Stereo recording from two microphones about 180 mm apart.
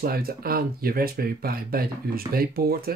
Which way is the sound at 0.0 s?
55° right (ahead or behind).